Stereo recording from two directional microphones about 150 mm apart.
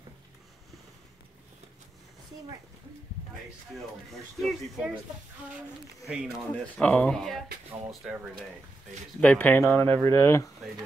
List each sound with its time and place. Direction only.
3.7 s speech: centre (ahead or behind)
6.0 s speech: 5° right (ahead or behind)
6.8 s speech: 5° left (ahead or behind)
9.2 s speech: 10° left (ahead or behind)